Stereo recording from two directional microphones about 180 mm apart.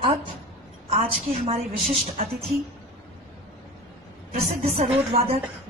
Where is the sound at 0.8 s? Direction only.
35° right (ahead or behind).